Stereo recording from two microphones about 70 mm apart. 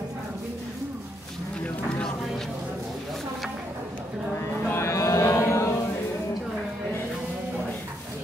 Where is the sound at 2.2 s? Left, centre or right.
Centre.